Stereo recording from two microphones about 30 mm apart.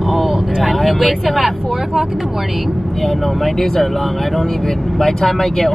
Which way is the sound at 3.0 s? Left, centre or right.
Centre.